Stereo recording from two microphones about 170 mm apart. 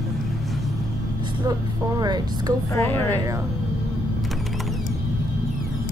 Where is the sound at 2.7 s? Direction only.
15° left (ahead or behind).